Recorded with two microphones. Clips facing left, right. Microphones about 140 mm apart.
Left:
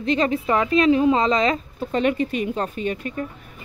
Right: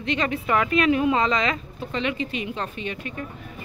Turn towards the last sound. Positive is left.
turn(degrees=40)  # may be behind; listen again after turning